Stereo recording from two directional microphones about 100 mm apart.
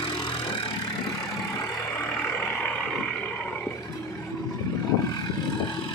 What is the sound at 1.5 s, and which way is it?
Vehicle, 25° left (ahead or behind).